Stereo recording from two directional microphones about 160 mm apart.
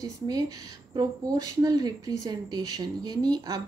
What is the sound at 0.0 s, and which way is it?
Speech, 25° right (ahead or behind).